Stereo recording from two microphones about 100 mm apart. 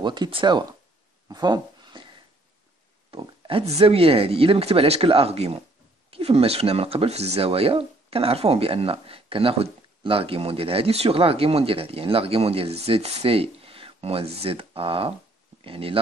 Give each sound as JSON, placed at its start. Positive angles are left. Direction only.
{"t": 0.0, "sound": "speech", "side_deg": -50}
{"t": 1.3, "sound": "a sound", "side_deg": -45}
{"t": 3.1, "sound": "speech", "side_deg": -65}